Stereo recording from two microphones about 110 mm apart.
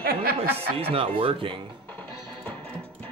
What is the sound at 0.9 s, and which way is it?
Speech, 60° right (ahead or behind).